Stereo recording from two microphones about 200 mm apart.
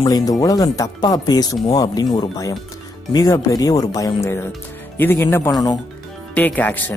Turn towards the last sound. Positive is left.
turn(degrees=10)  # may be behind; listen again after turning